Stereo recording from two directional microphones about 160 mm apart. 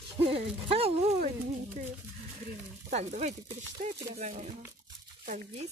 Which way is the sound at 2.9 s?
45° right (ahead or behind).